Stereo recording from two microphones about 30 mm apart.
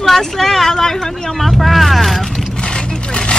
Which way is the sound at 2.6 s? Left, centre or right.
Left.